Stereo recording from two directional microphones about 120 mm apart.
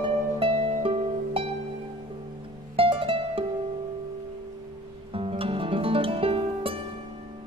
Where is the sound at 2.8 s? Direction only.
50° right (ahead or behind).